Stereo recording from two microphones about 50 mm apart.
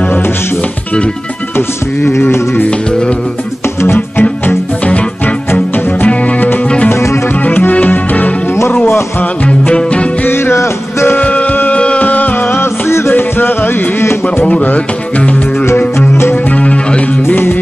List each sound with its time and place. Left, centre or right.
2.1 s music: left
3.8 s music: left
4.8 s music: left
6.9 s music: left
7.4 s music: left
9.5 s music: left
10.2 s music: left
11.1 s music: left
12.4 s music: left
13.1 s music: left
14.2 s a sound: left
14.6 s music: left
16.5 s music: left